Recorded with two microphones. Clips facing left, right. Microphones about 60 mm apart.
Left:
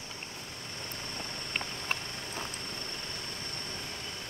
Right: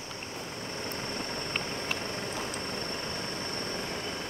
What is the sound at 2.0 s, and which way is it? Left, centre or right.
Vehicle, right.